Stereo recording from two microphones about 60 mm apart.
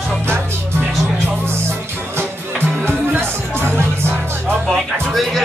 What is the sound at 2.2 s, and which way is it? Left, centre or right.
Music, right.